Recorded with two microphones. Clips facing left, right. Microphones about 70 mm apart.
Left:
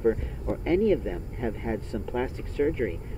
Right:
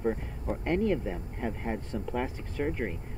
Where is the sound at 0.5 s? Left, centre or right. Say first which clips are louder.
Left 5 dB; centre.